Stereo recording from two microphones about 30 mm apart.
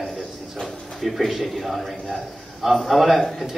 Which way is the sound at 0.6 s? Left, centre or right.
Centre.